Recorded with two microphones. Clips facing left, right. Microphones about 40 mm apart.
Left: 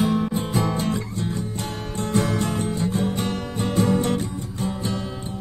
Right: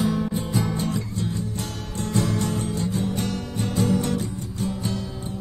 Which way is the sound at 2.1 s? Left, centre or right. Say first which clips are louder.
Left 2 dB; left.